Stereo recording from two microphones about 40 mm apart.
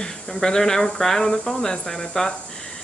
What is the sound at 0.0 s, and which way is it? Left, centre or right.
Speech, centre.